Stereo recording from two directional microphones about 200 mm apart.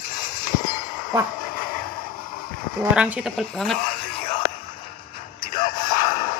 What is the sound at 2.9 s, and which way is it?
Speech, 5° right (ahead or behind).